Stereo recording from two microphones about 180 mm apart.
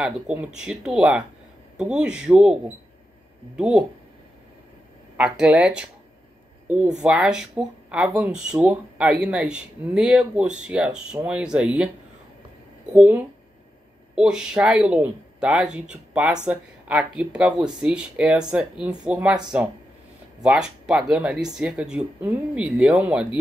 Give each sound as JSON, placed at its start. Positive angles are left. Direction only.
{"t": 0.0, "sound": "speech", "side_deg": -5}
{"t": 5.1, "sound": "speech", "side_deg": -5}
{"t": 7.0, "sound": "speech", "side_deg": -5}
{"t": 12.9, "sound": "speech", "side_deg": -10}
{"t": 20.4, "sound": "speech", "side_deg": -5}